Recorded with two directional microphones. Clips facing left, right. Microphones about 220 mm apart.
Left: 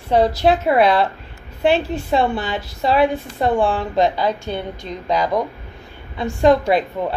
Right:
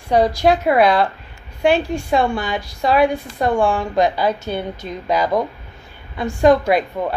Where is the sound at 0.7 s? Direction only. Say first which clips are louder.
Even; 30° left (ahead or behind).